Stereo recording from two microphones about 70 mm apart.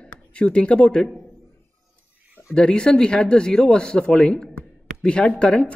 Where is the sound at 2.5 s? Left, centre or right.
Centre.